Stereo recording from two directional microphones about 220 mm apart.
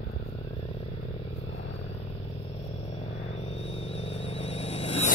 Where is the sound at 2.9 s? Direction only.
30° left (ahead or behind).